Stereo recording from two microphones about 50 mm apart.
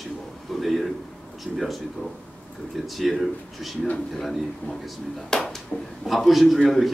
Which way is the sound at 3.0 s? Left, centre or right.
Centre.